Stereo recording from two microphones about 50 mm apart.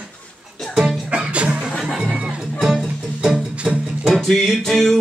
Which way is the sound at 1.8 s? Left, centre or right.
Centre.